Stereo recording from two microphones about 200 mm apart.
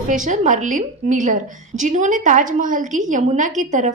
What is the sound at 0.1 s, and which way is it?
A woman's voice, 40° right (ahead or behind).